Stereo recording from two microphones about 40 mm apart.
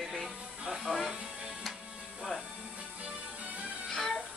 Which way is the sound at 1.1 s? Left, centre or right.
Centre.